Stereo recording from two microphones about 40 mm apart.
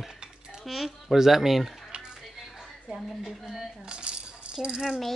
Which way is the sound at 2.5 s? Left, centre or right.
Centre.